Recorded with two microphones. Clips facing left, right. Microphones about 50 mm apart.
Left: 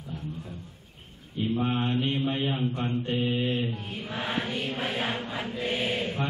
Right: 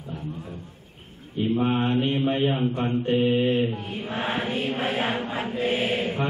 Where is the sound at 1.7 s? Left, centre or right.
Centre.